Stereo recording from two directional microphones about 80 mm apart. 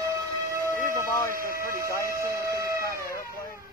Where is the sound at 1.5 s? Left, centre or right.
Right.